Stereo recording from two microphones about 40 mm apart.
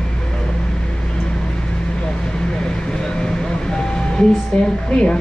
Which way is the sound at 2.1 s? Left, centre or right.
Centre.